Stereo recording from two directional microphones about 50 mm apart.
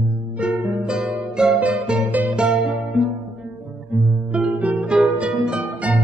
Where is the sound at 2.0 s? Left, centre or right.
Right.